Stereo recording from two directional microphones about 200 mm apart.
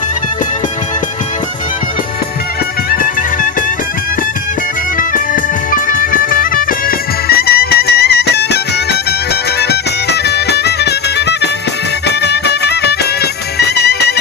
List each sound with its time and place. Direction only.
4.9 s music: 45° left (ahead or behind)
9.6 s music: 55° left (ahead or behind)